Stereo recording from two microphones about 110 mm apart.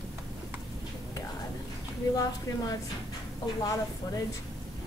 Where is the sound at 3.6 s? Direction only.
35° left (ahead or behind).